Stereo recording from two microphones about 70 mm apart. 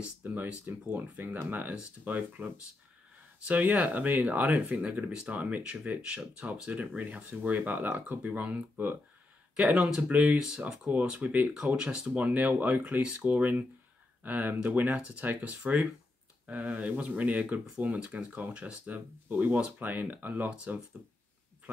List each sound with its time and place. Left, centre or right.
0.2 s speech: right; by 10.6 s centre
10.9 s speech: right
12.3 s speech: right
20.4 s speech: centre